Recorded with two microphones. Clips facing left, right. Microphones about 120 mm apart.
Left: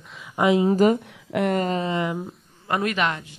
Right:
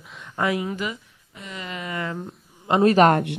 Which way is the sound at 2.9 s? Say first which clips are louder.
Right 9 dB; 45° right (ahead or behind).